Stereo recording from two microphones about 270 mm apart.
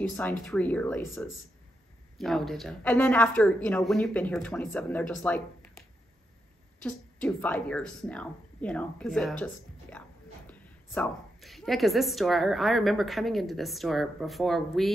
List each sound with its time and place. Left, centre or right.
0.4 s a woman's voice: centre